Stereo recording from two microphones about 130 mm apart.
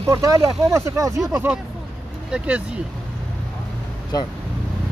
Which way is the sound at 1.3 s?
15° right (ahead or behind).